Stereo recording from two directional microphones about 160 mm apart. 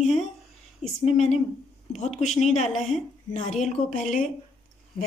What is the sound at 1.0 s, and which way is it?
Speech, 45° left (ahead or behind).